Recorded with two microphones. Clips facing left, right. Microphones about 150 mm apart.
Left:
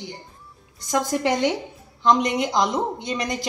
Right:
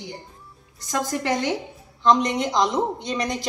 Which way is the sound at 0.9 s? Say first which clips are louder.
Left 2 dB; 20° left (ahead or behind).